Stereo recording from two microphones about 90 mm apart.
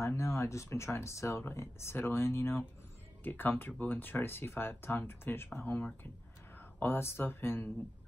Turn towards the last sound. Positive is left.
turn(degrees=20)  # may be behind; listen again after turning